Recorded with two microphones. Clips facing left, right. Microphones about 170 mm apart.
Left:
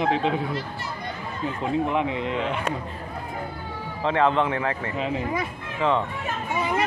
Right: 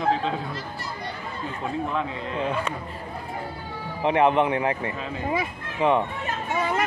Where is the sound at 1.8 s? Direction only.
20° left (ahead or behind).